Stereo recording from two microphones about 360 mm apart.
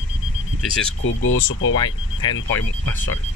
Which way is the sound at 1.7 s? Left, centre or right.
Centre.